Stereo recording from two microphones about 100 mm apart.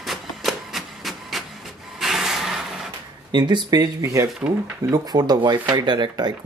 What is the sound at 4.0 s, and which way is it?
Speech, 30° right (ahead or behind).